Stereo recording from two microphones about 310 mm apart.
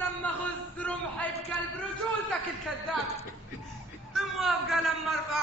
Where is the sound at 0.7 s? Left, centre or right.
Centre.